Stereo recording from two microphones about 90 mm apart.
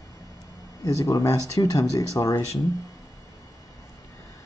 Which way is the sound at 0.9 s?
40° left (ahead or behind).